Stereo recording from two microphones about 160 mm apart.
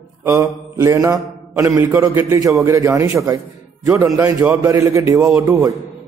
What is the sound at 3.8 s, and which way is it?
Speech, 20° right (ahead or behind).